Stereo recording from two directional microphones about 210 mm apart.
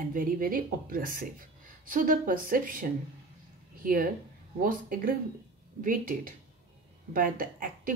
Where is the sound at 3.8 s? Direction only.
40° right (ahead or behind).